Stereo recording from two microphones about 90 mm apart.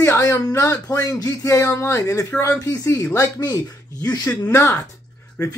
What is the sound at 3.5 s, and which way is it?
Speech, 40° left (ahead or behind).